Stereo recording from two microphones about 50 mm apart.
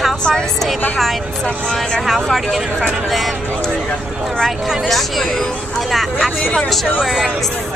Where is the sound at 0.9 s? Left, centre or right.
Centre.